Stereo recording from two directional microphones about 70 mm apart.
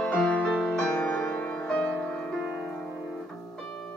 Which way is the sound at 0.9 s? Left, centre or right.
Centre.